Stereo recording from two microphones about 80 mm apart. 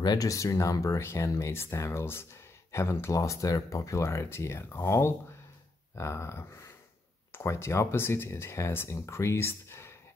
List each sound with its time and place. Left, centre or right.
0.0 s speech: left
0.3 s speech: left